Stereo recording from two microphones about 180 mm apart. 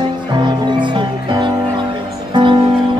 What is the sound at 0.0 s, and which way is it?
Music, 25° right (ahead or behind).